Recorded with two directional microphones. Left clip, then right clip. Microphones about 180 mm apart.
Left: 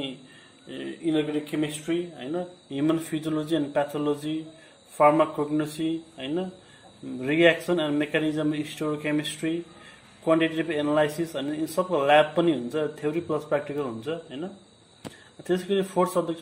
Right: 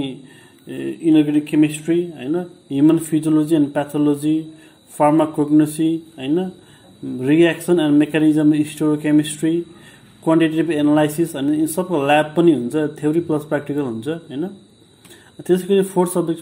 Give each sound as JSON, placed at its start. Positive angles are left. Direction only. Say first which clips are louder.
{"t": 0.7, "sound": "a man's voice", "louder": "right 11 dB", "side_deg": -25}